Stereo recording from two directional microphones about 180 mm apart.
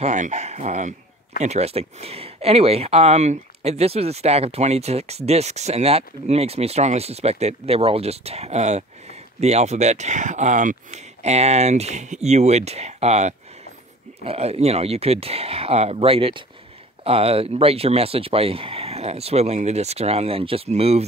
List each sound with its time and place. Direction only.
0.0 s speech: 40° right (ahead or behind)